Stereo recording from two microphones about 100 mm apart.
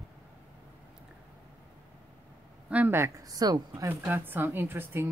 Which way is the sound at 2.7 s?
15° right (ahead or behind).